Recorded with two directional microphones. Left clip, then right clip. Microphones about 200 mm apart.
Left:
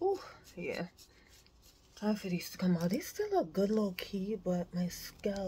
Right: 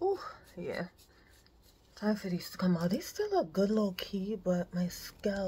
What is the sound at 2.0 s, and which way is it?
Speech, 5° right (ahead or behind).